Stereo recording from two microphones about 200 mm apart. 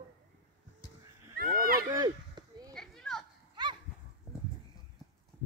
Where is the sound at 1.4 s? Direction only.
45° right (ahead or behind).